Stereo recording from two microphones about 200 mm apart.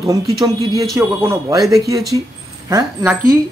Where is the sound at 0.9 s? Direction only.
15° right (ahead or behind).